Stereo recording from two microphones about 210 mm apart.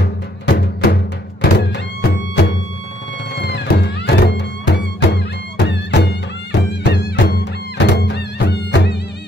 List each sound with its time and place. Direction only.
0.0 s music: 55° left (ahead or behind)